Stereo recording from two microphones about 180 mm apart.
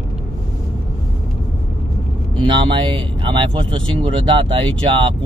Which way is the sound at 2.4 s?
25° right (ahead or behind).